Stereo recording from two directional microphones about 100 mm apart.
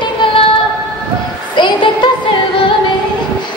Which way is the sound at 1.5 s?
50° left (ahead or behind).